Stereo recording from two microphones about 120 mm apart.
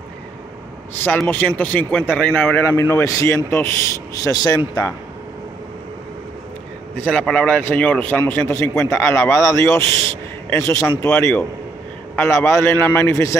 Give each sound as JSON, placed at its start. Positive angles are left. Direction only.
{"t": 1.2, "sound": "a man's voice", "side_deg": 15}
{"t": 4.2, "sound": "speech", "side_deg": 30}
{"t": 7.0, "sound": "a man's voice", "side_deg": 15}